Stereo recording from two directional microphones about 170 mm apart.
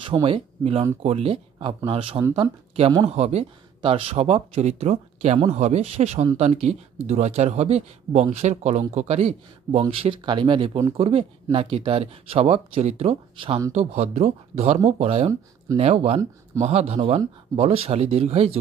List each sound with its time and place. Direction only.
0.0 s speech: 30° right (ahead or behind)